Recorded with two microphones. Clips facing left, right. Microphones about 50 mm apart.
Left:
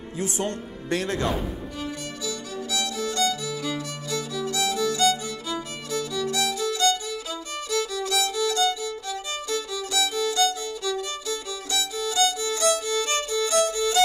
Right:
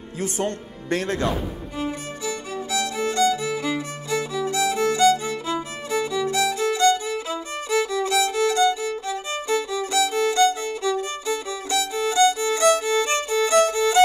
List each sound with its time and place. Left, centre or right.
0.2 s a man's voice: right
1.8 s music: right